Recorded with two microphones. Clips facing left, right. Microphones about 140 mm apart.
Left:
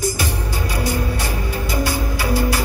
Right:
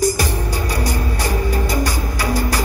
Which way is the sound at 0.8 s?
40° right (ahead or behind).